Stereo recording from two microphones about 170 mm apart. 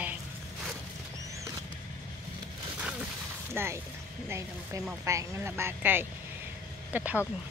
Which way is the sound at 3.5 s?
15° right (ahead or behind).